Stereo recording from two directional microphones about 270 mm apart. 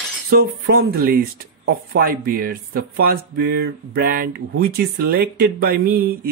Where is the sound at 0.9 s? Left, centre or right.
Right.